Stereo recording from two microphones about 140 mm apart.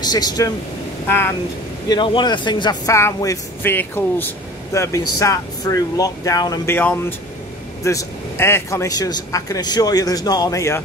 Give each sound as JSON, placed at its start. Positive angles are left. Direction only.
{"t": 0.0, "sound": "a man's voice", "side_deg": 30}
{"t": 1.0, "sound": "speech", "side_deg": 15}
{"t": 1.9, "sound": "speech", "side_deg": 35}
{"t": 2.9, "sound": "a man's voice", "side_deg": 20}